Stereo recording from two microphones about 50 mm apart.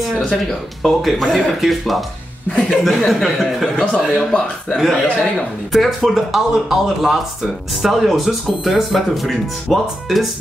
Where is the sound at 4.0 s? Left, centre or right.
Centre.